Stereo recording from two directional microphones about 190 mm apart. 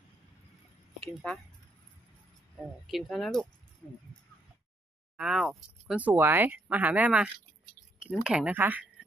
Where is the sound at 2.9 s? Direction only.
Centre (ahead or behind).